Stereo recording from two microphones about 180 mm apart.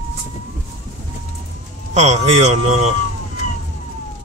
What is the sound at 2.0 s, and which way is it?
Speech, 35° right (ahead or behind).